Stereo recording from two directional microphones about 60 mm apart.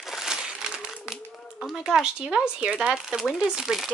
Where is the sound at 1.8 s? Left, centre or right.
Centre.